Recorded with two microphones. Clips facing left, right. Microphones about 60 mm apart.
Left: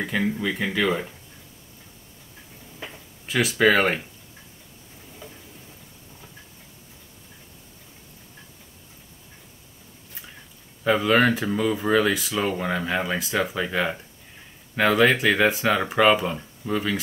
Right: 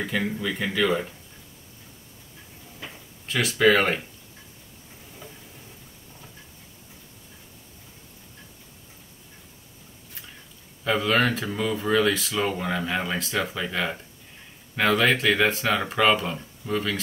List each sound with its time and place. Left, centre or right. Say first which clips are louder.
0.0 s speech: left 2 dB; centre
2.8 s a sound: left 2 dB; centre
10.8 s speech: left 3 dB; centre